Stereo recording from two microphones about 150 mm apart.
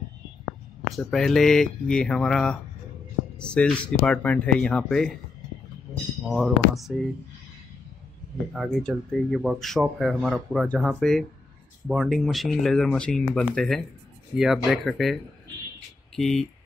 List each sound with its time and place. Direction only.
0.8 s speech: centre (ahead or behind)
6.2 s speech: centre (ahead or behind)
8.5 s speech: centre (ahead or behind)
16.2 s speech: centre (ahead or behind)